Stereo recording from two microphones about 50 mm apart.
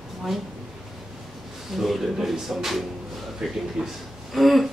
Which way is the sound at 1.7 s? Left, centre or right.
Centre.